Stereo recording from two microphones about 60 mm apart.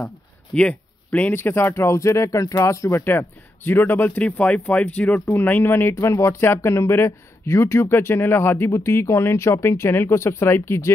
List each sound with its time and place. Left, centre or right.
0.6 s speech: left
1.3 s speech: left
2.9 s speech: left
4.2 s speech: left
5.3 s speech: left
8.7 s speech: left